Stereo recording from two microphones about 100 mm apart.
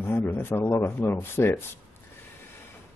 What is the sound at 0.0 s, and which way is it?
Speech, 20° left (ahead or behind).